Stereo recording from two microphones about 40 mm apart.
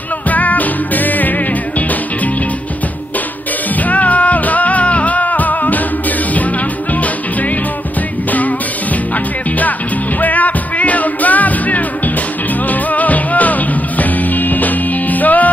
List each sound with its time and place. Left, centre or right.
0.3 s music: left
3.8 s music: left
8.3 s music: left
10.2 s music: left
12.9 s music: left